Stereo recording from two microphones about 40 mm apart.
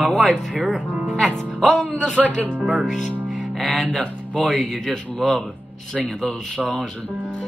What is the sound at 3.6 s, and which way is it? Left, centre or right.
Speech, centre.